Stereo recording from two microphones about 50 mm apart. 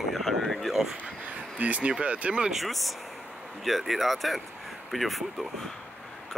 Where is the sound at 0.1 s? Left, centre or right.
Centre.